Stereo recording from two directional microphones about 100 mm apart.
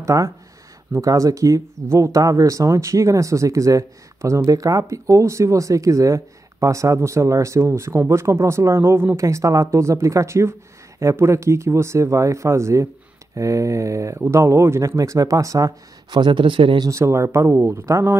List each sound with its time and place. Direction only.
0.0 s speech: 35° right (ahead or behind)
16.1 s speech: 50° right (ahead or behind)
16.8 s speech: 30° right (ahead or behind)